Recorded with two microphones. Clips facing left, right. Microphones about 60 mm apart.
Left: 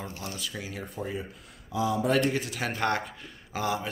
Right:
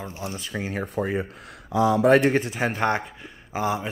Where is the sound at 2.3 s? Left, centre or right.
Right.